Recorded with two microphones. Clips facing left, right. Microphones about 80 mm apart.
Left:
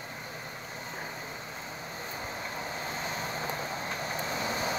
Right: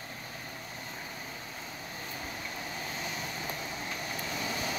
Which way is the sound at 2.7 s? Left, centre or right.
Left.